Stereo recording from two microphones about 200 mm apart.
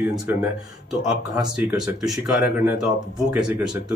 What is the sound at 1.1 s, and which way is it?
Speech, 5° right (ahead or behind).